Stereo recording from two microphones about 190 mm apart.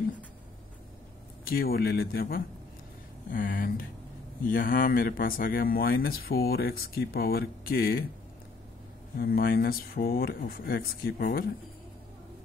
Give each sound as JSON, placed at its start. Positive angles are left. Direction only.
{"t": 1.4, "sound": "speech", "side_deg": 55}
{"t": 9.1, "sound": "speech", "side_deg": 50}